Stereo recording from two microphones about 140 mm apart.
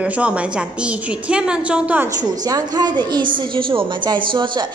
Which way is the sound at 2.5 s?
25° right (ahead or behind).